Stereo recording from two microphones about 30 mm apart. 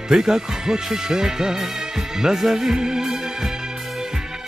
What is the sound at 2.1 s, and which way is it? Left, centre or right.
Speech, centre.